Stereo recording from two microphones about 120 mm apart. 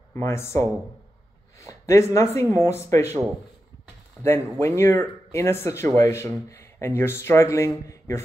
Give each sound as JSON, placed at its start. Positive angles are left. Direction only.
{"t": 0.1, "sound": "speech", "side_deg": 20}
{"t": 4.2, "sound": "speech", "side_deg": 20}